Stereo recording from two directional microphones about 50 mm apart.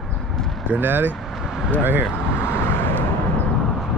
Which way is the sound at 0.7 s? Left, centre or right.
Right.